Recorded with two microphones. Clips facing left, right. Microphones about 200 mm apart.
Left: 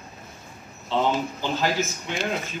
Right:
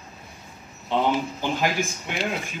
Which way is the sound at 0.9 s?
15° right (ahead or behind).